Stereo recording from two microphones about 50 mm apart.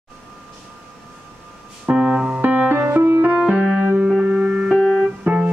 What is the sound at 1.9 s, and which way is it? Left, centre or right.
Music, right.